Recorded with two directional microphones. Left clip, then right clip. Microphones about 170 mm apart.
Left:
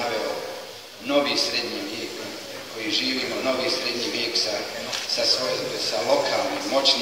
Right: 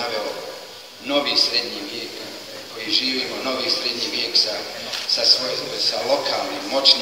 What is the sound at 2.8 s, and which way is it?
A man's voice, 20° right (ahead or behind).